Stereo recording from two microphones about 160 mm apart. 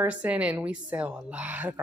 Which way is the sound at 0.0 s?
10° right (ahead or behind).